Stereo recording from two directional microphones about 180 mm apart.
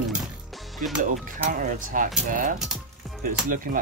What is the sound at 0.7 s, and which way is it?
Speech, centre (ahead or behind).